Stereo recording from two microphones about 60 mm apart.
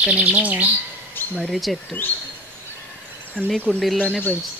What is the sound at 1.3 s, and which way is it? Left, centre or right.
Speech, centre.